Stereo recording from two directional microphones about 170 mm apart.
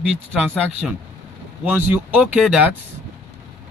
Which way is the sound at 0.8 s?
5° right (ahead or behind).